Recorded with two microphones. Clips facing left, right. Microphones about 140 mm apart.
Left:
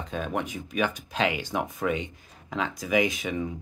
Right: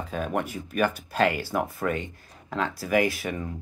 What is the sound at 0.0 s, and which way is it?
Speech, 5° right (ahead or behind).